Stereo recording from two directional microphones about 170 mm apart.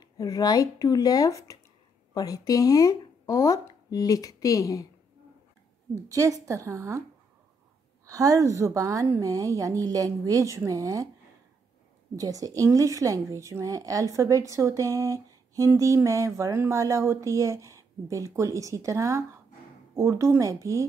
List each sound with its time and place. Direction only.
0.2 s speech: 20° left (ahead or behind)
6.0 s a woman's voice: 20° right (ahead or behind)
8.1 s a woman's voice: 20° right (ahead or behind)
12.2 s a woman's voice: 20° right (ahead or behind)